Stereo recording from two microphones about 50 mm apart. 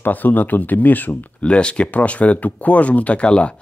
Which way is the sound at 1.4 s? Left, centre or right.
Left.